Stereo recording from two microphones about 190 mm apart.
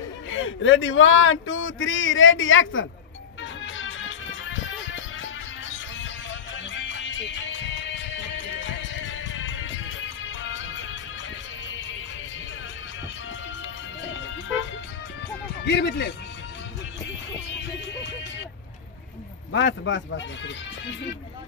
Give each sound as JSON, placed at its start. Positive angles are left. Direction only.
{"t": 0.3, "sound": "speech", "side_deg": 90}
{"t": 3.6, "sound": "music", "side_deg": 90}
{"t": 6.5, "sound": "music", "side_deg": 75}
{"t": 15.6, "sound": "speech", "side_deg": 65}
{"t": 19.5, "sound": "speech", "side_deg": 70}